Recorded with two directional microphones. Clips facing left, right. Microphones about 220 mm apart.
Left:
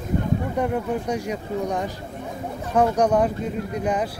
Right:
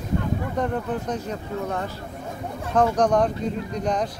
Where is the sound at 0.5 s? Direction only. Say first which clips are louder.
Left 1 dB; 10° left (ahead or behind).